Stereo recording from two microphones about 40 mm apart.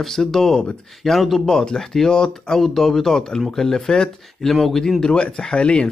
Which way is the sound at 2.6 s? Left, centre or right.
Centre.